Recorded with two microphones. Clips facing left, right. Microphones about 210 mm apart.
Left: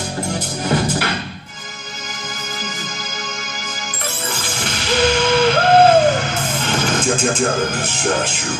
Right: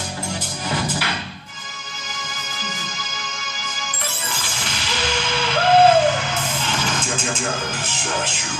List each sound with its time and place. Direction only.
0.3 s music: 50° left (ahead or behind)
4.6 s music: 50° left (ahead or behind)